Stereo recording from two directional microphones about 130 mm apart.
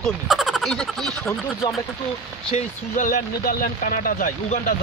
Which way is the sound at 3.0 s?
80° left.